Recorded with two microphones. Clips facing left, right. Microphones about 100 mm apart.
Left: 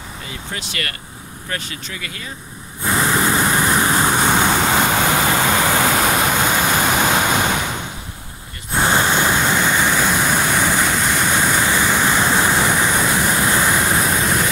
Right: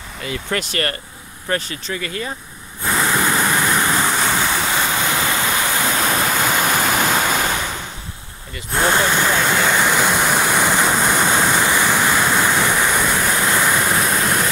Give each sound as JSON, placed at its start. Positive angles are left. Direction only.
{"t": 0.6, "sound": "speech", "side_deg": -40}
{"t": 2.8, "sound": "vehicle", "side_deg": 5}
{"t": 6.0, "sound": "vehicle", "side_deg": 5}
{"t": 8.8, "sound": "vehicle", "side_deg": 15}
{"t": 11.4, "sound": "a sound", "side_deg": -15}
{"t": 11.9, "sound": "waterfall", "side_deg": -5}